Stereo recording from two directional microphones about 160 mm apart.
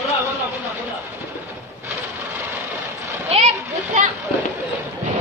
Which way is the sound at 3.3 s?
40° right (ahead or behind).